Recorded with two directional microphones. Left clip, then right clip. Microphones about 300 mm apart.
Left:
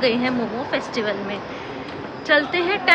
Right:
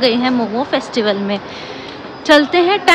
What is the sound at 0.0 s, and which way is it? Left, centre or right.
A woman's voice, centre.